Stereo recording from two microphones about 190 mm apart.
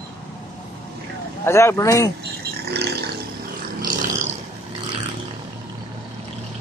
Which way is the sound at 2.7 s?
60° right (ahead or behind).